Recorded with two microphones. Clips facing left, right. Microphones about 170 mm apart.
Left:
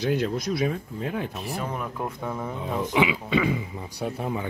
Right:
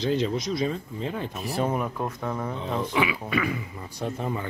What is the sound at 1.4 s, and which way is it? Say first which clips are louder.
Speech: right 4 dB; 35° right (ahead or behind).